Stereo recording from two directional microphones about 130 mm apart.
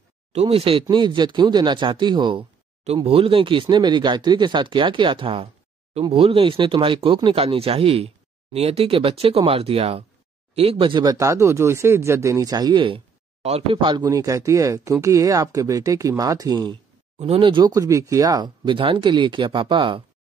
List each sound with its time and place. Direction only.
0.3 s speech: 55° right (ahead or behind); by 2.4 s 40° right (ahead or behind)
2.8 s speech: 50° right (ahead or behind)
13.4 s speech: 50° right (ahead or behind)
13.8 s speech: 30° right (ahead or behind)
17.2 s speech: 45° right (ahead or behind)